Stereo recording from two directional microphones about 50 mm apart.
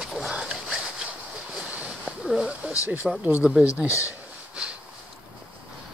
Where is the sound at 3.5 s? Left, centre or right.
Right.